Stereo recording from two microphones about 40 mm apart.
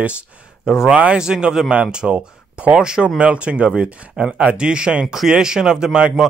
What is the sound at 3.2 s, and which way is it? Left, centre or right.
Speech, right.